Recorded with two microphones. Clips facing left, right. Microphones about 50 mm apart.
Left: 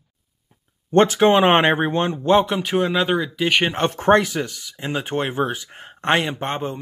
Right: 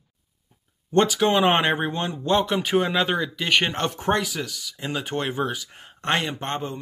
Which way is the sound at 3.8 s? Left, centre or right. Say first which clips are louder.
Left 7 dB; left.